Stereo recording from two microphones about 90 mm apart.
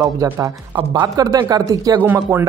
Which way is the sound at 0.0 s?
40° right (ahead or behind).